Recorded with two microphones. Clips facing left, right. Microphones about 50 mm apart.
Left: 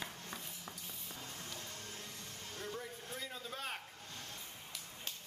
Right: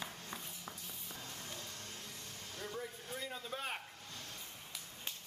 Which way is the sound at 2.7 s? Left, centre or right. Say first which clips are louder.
Right 1 dB; centre.